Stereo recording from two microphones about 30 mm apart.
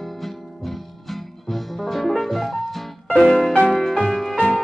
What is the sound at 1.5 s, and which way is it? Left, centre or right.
Music, centre.